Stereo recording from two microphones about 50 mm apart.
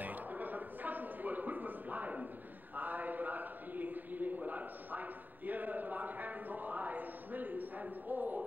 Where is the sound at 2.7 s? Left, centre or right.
Right.